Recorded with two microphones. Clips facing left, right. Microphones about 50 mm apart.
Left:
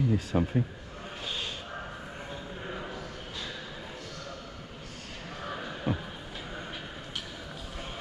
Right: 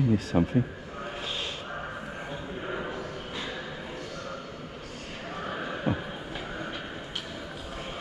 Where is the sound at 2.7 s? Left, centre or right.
Right.